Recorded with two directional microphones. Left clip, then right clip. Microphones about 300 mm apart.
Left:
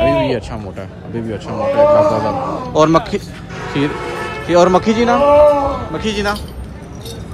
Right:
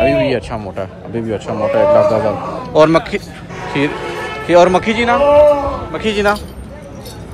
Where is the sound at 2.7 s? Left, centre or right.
Centre.